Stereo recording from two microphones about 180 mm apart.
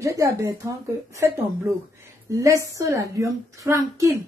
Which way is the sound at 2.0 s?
15° right (ahead or behind).